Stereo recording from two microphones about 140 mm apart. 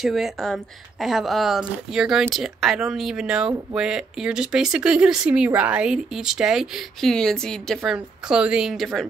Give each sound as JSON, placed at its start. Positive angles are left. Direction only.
{"t": 0.0, "sound": "speech", "side_deg": 0}